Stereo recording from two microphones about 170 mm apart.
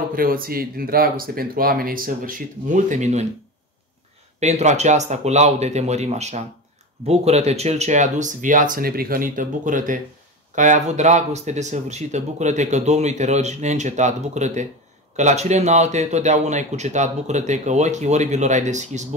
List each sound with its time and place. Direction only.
0.1 s speech: 60° right (ahead or behind)
4.4 s speech: 40° right (ahead or behind)